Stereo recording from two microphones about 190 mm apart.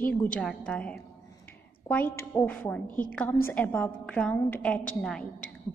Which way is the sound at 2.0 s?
50° left (ahead or behind).